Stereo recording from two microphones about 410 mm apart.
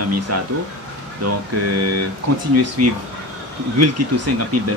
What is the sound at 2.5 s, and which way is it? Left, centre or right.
Speech, right.